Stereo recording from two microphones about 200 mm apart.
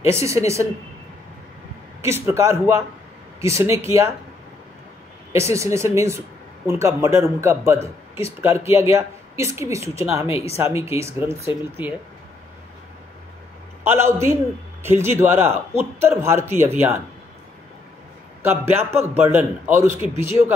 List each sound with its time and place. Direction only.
0.0 s speech: 15° right (ahead or behind)
2.0 s speech: 15° right (ahead or behind)
5.3 s speech: 15° right (ahead or behind)
10.2 s speech: 30° left (ahead or behind)
10.6 s speech: 15° right (ahead or behind)
13.8 s speech: 10° right (ahead or behind)
18.4 s speech: 10° right (ahead or behind)